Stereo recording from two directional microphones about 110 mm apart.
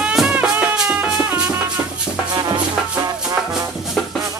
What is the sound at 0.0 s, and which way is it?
Music, 5° right (ahead or behind).